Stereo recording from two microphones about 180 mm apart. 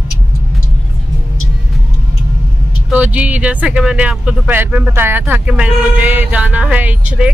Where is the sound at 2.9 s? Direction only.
10° right (ahead or behind).